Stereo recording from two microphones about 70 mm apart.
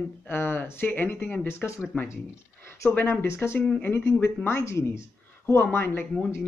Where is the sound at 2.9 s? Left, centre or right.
Left.